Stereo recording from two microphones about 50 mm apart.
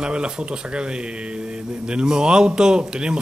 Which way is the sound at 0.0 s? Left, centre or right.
Right.